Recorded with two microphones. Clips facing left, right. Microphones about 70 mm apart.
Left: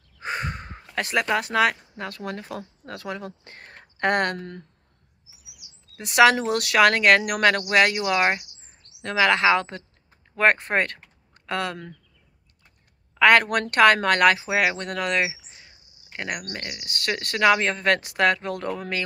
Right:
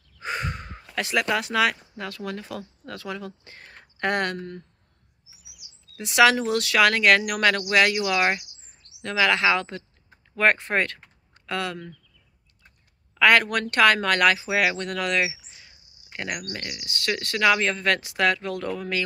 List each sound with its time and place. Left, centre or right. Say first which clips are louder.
0.2 s crow: left 1 dB; left
0.9 s speech: left 1 dB; left
5.9 s speech: left 1 dB; left
13.2 s speech: left 2 dB; left